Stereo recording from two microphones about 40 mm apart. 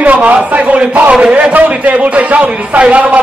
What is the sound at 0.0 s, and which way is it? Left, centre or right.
A man's voice, right.